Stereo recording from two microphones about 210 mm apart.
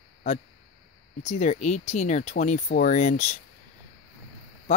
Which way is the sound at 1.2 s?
35° left (ahead or behind).